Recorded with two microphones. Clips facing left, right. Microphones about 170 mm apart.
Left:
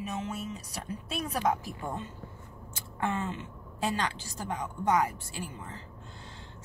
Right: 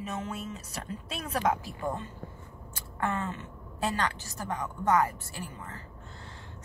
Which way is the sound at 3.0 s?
20° left (ahead or behind).